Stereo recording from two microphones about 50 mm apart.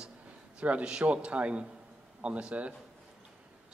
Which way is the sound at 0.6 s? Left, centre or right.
Right.